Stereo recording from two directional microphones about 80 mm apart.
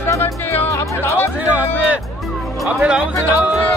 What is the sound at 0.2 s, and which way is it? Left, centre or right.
Music, left.